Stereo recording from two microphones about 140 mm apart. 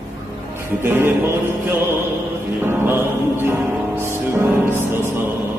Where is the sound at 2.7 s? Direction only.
15° right (ahead or behind).